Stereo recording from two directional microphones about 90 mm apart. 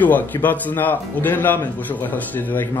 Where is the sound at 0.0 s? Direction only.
20° left (ahead or behind).